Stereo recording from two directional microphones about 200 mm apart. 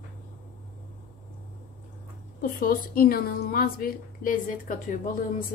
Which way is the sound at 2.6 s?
45° left (ahead or behind).